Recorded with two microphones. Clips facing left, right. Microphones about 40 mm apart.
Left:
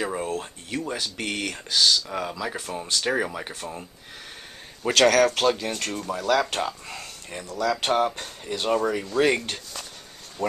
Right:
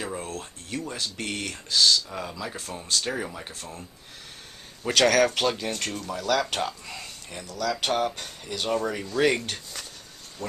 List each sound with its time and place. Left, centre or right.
0.0 s speech: left
4.9 s speech: centre
5.9 s speech: centre
7.2 s speech: centre